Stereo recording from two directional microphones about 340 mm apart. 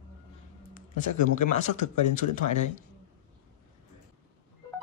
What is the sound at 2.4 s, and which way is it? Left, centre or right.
Speech, left.